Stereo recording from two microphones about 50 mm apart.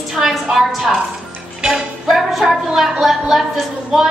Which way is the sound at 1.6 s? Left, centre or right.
Centre.